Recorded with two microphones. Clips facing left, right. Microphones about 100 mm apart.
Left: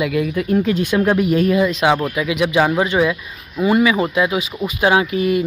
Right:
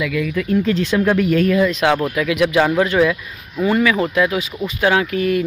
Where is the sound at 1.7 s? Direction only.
Centre (ahead or behind).